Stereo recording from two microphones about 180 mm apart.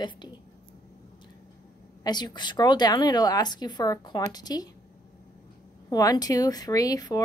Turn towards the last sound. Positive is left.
turn(degrees=20)  # may be behind; listen again after turning